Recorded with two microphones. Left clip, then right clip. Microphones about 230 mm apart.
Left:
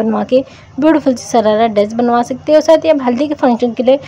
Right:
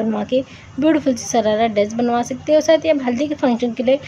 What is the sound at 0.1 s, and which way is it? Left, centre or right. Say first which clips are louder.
A woman's voice: left 7 dB; centre.